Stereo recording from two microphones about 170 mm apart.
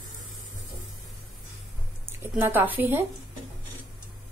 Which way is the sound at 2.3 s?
10° right (ahead or behind).